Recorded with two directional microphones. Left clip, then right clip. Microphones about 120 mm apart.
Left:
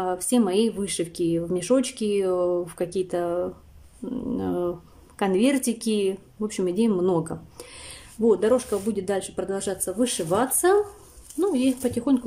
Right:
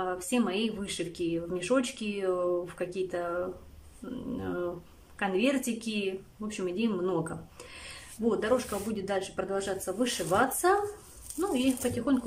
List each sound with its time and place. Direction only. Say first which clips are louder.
0.0 s a woman's voice: left 7 dB; 45° left (ahead or behind)